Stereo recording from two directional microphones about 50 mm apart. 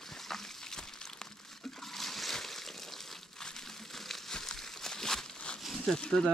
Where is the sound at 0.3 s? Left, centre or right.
Centre.